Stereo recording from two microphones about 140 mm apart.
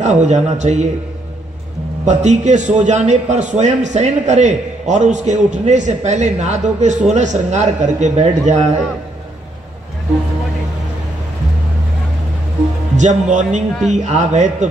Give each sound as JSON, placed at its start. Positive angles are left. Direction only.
{"t": 0.0, "sound": "a man's voice", "side_deg": -55}
{"t": 2.0, "sound": "a man's voice", "side_deg": -55}
{"t": 12.9, "sound": "a man's voice", "side_deg": -60}